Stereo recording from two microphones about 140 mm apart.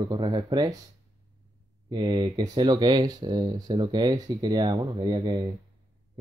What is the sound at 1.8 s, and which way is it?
Speech, 30° right (ahead or behind).